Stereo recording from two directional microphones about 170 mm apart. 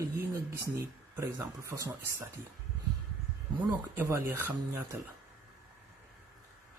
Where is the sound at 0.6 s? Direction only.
15° right (ahead or behind).